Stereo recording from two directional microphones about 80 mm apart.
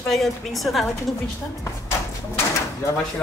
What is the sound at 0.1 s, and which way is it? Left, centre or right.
Speech, centre.